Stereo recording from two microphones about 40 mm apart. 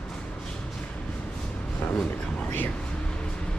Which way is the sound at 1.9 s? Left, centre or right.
Left.